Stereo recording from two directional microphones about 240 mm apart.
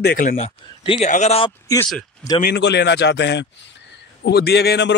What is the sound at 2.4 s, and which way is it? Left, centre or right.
A man's voice, left.